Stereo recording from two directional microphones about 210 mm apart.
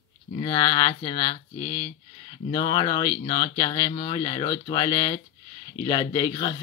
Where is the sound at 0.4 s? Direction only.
20° left (ahead or behind).